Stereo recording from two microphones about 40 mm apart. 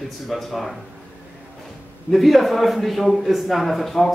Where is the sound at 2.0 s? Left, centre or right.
Centre.